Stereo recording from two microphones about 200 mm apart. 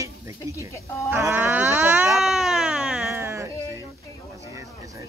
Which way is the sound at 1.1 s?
10° right (ahead or behind).